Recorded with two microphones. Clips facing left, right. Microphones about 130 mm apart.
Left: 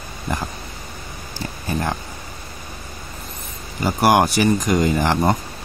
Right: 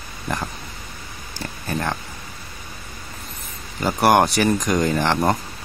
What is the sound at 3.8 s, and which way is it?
Speech, 5° left (ahead or behind).